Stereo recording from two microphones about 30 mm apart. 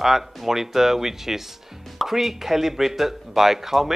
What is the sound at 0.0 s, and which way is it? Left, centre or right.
Speech, centre.